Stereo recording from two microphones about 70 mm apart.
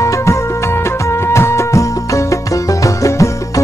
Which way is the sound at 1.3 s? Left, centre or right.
Left.